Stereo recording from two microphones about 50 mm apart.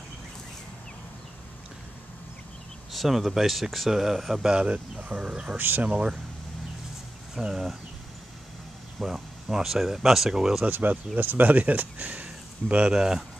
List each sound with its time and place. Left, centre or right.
2.9 s speech: centre
5.6 s speech: right
5.9 s speech: right
7.3 s speech: centre
9.0 s speech: centre
10.6 s speech: right
12.9 s speech: centre